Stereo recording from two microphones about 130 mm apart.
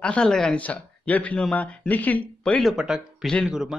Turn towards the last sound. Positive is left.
turn(degrees=-5)  # may be behind; listen again after turning